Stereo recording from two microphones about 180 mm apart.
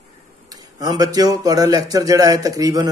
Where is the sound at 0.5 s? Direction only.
20° right (ahead or behind).